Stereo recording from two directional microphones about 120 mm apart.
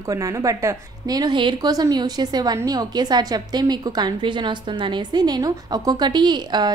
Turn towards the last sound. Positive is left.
turn(degrees=-35)  # may be behind; listen again after turning